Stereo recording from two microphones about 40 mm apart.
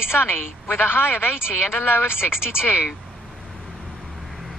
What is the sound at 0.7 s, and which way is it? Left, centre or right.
A man's voice, left.